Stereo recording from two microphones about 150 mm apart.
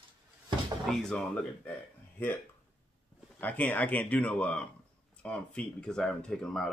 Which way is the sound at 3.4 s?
15° left (ahead or behind).